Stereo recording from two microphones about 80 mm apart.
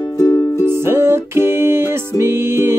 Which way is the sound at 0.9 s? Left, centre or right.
Right.